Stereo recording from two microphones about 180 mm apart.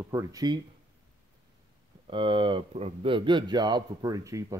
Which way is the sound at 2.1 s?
30° right (ahead or behind).